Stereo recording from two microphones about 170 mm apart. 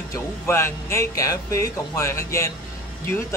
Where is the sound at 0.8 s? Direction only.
20° left (ahead or behind).